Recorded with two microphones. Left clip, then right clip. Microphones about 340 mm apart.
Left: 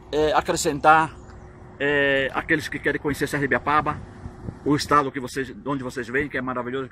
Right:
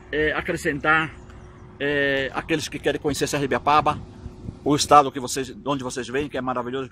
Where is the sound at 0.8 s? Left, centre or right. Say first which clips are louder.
Left 5 dB; centre.